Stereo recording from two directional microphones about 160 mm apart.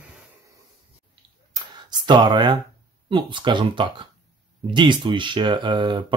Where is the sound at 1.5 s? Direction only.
30° right (ahead or behind).